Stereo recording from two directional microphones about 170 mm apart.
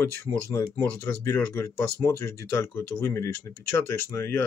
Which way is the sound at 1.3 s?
15° left (ahead or behind).